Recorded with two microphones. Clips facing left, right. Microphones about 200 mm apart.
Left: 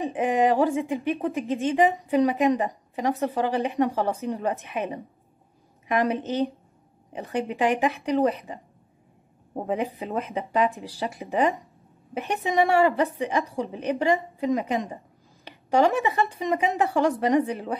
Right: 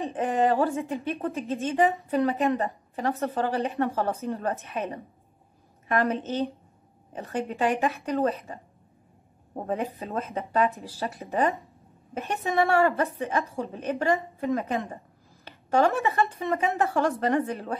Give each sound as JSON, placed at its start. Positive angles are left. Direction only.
{"t": 0.0, "sound": "a woman's voice", "side_deg": 15}
{"t": 9.6, "sound": "a woman's voice", "side_deg": 15}